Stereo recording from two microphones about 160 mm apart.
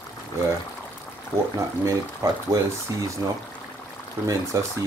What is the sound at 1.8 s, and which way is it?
Speech, 20° right (ahead or behind).